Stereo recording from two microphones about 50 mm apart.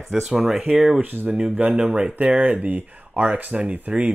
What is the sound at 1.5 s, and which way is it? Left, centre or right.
Speech, centre.